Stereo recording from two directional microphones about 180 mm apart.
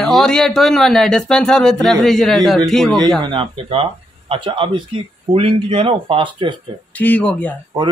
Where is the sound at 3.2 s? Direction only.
25° right (ahead or behind).